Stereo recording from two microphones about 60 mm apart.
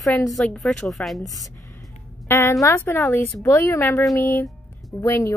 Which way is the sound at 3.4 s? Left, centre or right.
Left.